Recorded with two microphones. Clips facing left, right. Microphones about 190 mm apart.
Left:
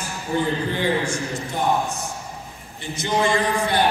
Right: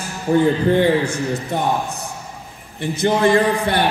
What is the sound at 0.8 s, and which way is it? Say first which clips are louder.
Speech: right 6 dB; 60° right (ahead or behind).